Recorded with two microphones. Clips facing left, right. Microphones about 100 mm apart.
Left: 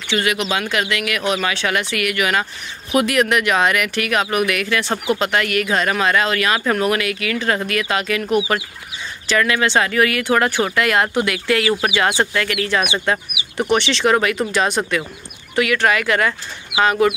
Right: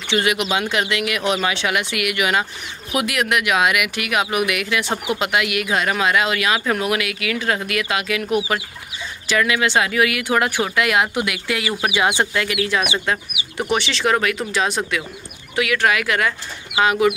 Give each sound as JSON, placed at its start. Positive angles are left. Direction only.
{"t": 0.1, "sound": "speech", "side_deg": -20}
{"t": 2.9, "sound": "speech", "side_deg": -5}